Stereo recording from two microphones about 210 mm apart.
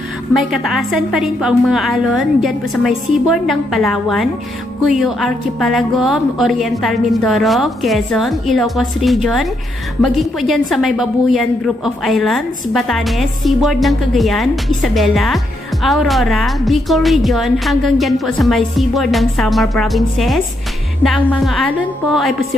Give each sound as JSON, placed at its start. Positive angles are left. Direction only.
{"t": 0.3, "sound": "a woman's voice", "side_deg": 0}